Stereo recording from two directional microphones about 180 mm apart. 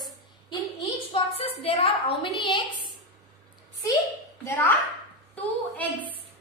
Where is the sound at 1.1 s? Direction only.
30° left (ahead or behind).